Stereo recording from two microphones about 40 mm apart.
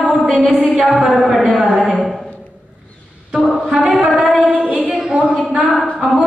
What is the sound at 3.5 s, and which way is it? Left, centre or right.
Music, centre.